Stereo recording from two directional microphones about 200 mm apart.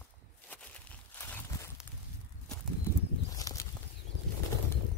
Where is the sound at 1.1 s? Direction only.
10° left (ahead or behind).